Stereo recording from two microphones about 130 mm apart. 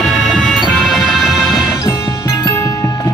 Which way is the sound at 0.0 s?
Centre (ahead or behind).